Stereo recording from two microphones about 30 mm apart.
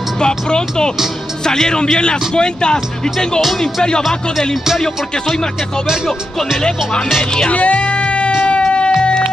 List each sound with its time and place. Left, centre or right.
0.2 s speech: left
7.4 s music: left